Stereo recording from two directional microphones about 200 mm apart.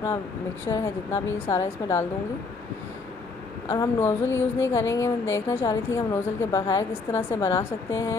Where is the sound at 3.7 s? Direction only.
15° left (ahead or behind).